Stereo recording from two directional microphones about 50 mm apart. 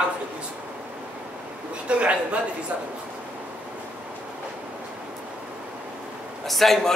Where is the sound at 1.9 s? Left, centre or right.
Right.